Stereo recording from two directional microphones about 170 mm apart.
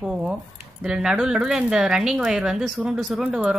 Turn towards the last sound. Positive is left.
turn(degrees=-5)  # may be behind; listen again after turning